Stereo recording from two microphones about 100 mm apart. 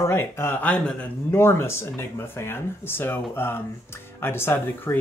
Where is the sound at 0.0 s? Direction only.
25° left (ahead or behind); by 1.0 s 10° left (ahead or behind).